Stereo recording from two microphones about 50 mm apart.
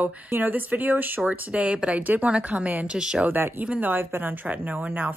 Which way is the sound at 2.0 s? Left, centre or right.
Right.